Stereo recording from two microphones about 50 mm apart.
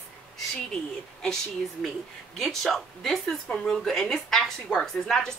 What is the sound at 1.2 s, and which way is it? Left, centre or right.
A woman's voice, centre.